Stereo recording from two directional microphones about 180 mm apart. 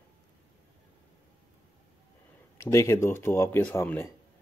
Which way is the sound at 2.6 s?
15° left (ahead or behind).